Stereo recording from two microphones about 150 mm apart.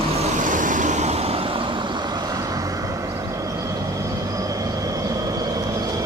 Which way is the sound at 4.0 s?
20° right (ahead or behind).